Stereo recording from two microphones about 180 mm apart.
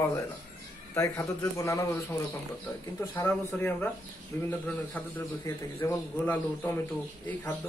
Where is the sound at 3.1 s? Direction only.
10° left (ahead or behind).